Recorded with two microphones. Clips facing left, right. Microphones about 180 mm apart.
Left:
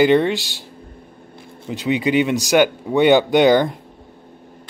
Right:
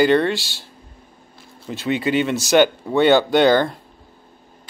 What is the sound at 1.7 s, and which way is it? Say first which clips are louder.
Speech: left 2 dB; 15° left (ahead or behind).